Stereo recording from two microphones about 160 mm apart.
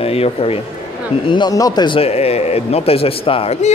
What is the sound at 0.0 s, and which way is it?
A man's voice, 40° left (ahead or behind).